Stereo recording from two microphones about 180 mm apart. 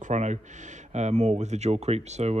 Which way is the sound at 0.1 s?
40° right (ahead or behind).